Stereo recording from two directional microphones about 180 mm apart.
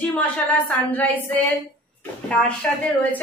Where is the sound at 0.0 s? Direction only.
10° left (ahead or behind).